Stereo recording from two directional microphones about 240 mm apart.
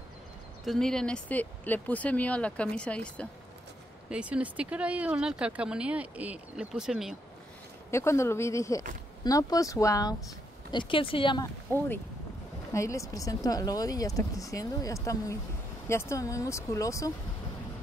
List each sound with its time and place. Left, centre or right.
0.7 s speech: centre
7.9 s speech: centre
12.7 s speech: centre